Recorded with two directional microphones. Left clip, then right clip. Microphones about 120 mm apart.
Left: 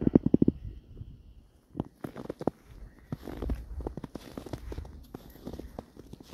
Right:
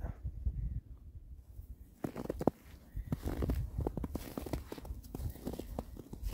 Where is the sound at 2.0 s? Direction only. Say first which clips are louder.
Left 1 dB; 15° right (ahead or behind).